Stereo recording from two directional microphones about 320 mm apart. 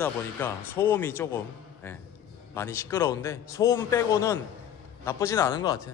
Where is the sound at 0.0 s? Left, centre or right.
Centre.